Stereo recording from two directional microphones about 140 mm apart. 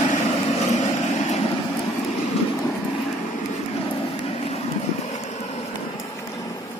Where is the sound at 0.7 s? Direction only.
55° left (ahead or behind).